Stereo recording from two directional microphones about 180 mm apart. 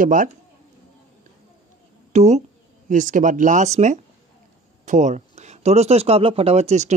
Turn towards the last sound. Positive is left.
turn(degrees=-35)  # may be behind; listen again after turning